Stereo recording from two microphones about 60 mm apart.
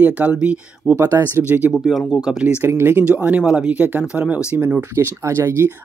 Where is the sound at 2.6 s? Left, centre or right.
Right.